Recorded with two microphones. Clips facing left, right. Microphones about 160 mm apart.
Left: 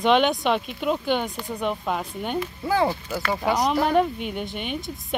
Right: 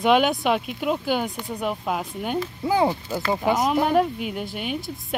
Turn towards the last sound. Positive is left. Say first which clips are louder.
# even
turn(degrees=-5)  # may be behind; listen again after turning